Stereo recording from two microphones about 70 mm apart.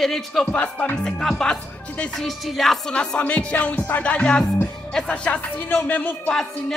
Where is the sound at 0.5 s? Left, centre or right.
Centre.